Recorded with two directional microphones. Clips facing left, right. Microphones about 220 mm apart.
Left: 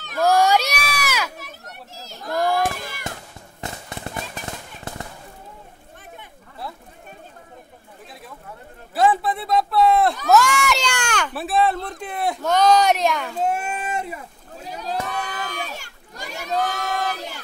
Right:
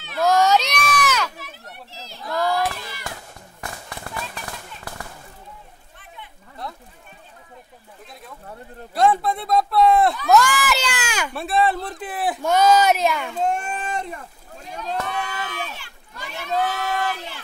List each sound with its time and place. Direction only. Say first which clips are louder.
0.2 s run: even; 10° left (ahead or behind)
1.3 s children playing: left 1 dB; 45° left (ahead or behind)
3.6 s firecracker: left 3 dB; 25° left (ahead or behind)
8.9 s speech: even; 5° left (ahead or behind)
15.0 s crowd: even; 40° left (ahead or behind)